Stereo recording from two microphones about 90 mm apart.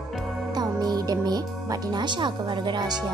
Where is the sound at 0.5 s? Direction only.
45° right (ahead or behind).